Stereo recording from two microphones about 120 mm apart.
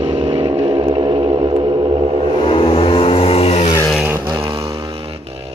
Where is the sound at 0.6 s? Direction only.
40° right (ahead or behind).